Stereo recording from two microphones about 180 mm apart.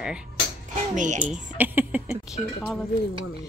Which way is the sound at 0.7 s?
45° right (ahead or behind).